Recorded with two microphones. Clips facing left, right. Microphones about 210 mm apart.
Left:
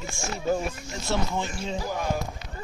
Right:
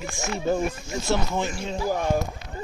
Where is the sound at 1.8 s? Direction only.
45° right (ahead or behind).